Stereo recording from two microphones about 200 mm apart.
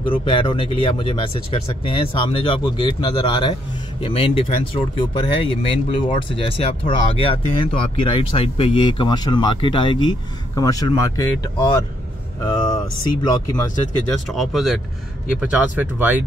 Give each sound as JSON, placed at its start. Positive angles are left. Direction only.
{"t": 0.0, "sound": "speech", "side_deg": 25}
{"t": 12.4, "sound": "vehicle", "side_deg": 20}
{"t": 13.2, "sound": "speech", "side_deg": 20}
{"t": 14.3, "sound": "speech", "side_deg": 0}